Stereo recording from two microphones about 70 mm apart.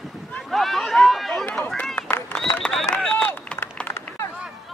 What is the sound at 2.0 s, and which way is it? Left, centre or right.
Run, left.